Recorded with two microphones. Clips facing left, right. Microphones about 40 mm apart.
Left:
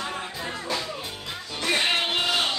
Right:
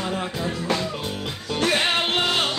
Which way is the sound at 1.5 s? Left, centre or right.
Right.